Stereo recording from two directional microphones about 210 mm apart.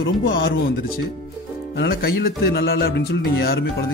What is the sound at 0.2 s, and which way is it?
Speech, 50° left (ahead or behind).